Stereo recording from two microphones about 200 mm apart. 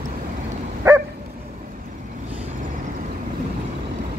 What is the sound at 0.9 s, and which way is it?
Dog, 15° right (ahead or behind).